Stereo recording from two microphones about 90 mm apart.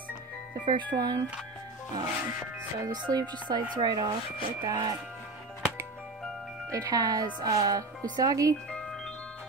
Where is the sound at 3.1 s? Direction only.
50° right (ahead or behind).